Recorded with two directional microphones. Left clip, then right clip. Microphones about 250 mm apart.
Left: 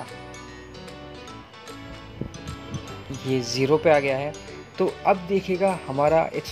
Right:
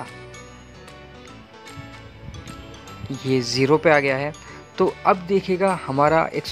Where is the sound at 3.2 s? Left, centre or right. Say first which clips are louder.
Right 4 dB; centre.